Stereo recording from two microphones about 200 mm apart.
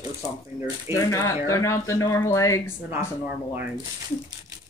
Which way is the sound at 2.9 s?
10° right (ahead or behind).